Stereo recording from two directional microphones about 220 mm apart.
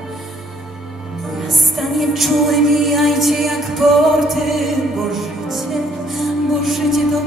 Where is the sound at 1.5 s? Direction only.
Centre (ahead or behind).